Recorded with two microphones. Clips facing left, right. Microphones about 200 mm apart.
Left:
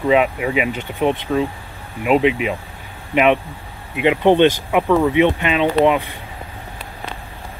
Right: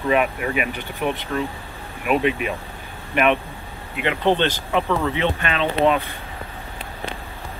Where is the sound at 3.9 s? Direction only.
15° left (ahead or behind).